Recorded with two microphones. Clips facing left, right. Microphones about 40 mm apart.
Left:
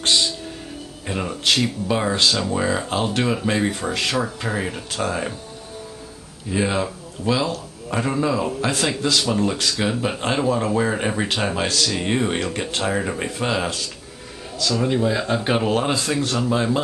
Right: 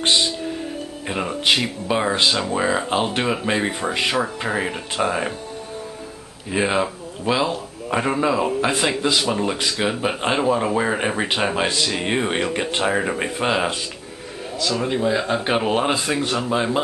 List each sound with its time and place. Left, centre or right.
0.0 s music: centre
1.0 s speech: centre
6.5 s speech: right